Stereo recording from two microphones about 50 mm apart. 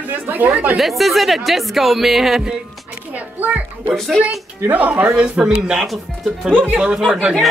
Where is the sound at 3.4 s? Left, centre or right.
Right.